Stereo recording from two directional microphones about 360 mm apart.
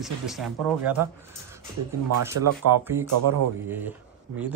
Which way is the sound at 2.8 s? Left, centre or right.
Centre.